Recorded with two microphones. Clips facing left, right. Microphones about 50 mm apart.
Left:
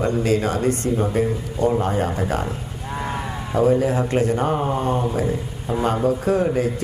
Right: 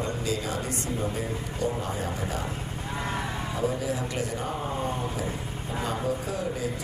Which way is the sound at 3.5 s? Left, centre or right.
Left.